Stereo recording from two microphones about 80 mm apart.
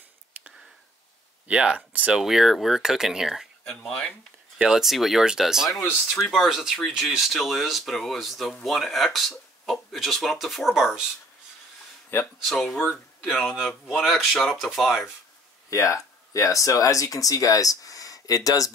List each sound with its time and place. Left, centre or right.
1.5 s speech: centre
2.1 s speech: centre
3.6 s speech: centre
4.6 s speech: centre
12.4 s speech: centre
15.7 s speech: left